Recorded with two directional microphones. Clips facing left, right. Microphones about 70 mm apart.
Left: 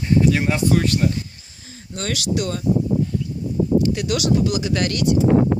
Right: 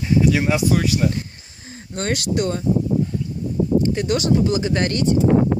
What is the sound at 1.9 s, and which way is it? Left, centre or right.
Speech, right.